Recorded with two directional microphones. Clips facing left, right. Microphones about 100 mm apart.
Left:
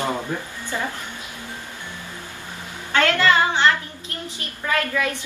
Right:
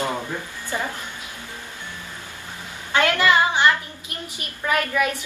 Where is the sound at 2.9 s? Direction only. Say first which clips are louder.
Even; 15° right (ahead or behind).